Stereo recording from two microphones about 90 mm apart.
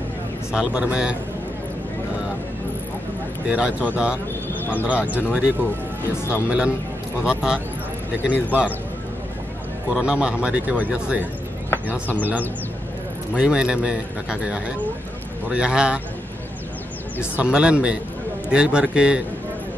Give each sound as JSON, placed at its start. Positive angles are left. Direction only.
{"t": 0.5, "sound": "speech", "side_deg": -10}
{"t": 3.4, "sound": "a man's voice", "side_deg": -10}
{"t": 9.9, "sound": "a man's voice", "side_deg": -10}
{"t": 17.2, "sound": "speech", "side_deg": -10}